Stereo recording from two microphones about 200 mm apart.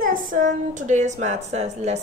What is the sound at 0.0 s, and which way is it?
Speech, 40° right (ahead or behind).